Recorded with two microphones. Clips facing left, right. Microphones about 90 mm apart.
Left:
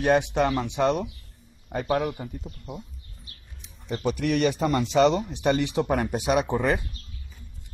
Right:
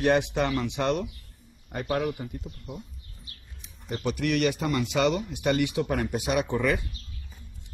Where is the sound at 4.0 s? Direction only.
40° left (ahead or behind).